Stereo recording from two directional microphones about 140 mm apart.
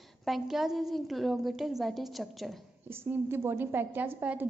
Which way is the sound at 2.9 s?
15° right (ahead or behind).